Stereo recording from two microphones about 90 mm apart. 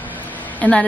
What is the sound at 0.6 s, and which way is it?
Speech, 15° left (ahead or behind).